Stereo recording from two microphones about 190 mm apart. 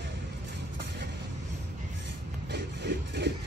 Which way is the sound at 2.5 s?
65° right (ahead or behind).